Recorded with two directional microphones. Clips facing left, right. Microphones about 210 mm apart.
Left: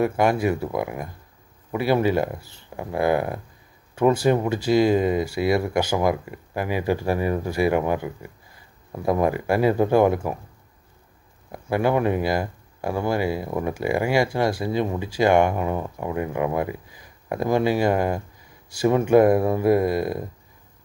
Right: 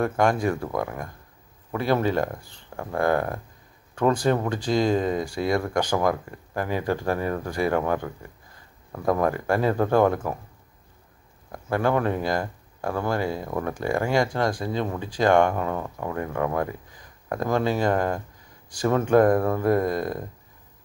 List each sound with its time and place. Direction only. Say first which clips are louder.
0.0 s speech: left 2 dB; 10° left (ahead or behind)
11.5 s speech: left 2 dB; 10° left (ahead or behind)